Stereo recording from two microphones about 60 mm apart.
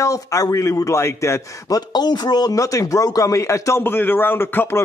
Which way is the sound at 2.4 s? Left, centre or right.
Left.